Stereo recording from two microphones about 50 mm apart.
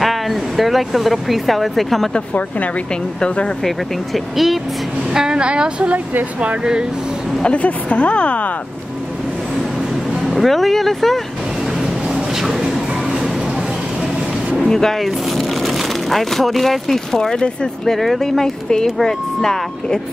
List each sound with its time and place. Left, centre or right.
0.0 s speech: centre
3.2 s a woman's voice: left
3.6 s speech: centre
5.1 s a woman's voice: centre
7.4 s a woman's voice: left
10.2 s speech: centre
11.8 s a sound: centre
14.7 s speech: centre